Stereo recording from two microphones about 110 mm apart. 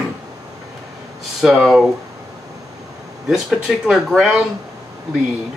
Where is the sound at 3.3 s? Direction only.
5° right (ahead or behind).